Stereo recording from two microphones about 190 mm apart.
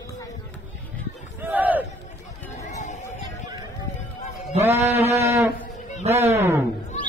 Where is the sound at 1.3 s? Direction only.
10° right (ahead or behind).